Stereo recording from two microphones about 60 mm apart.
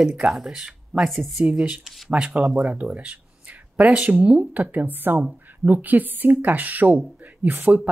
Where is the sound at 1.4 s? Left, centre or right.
Centre.